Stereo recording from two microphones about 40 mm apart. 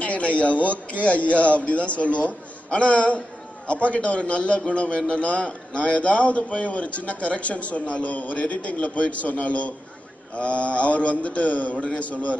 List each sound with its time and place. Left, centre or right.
0.0 s a man's voice: left